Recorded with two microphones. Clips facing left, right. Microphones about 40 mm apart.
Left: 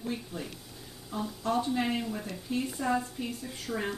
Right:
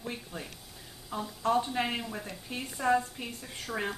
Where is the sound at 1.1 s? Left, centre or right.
Right.